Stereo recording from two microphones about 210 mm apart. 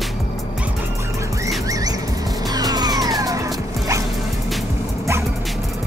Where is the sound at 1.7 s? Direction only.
15° right (ahead or behind).